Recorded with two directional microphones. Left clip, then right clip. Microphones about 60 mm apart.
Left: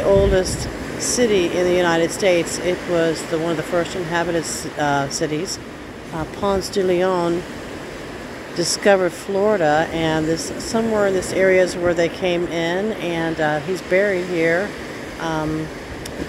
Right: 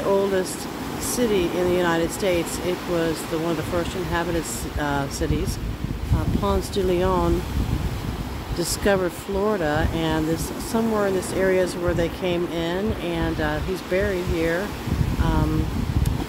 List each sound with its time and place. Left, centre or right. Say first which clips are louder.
0.0 s vehicle: left 6 dB; right
1.0 s speech: left 5 dB; centre
8.5 s speech: left 6 dB; centre